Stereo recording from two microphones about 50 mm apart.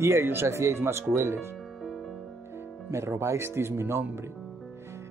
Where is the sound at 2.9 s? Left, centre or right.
Right.